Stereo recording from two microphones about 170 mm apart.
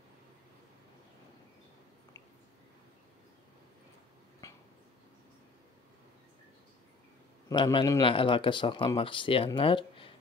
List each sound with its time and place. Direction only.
7.4 s speech: 25° left (ahead or behind)